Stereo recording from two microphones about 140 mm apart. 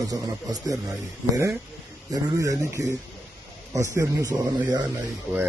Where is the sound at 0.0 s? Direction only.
25° right (ahead or behind).